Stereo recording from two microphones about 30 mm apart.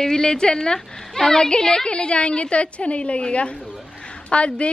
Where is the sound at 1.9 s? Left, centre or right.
Left.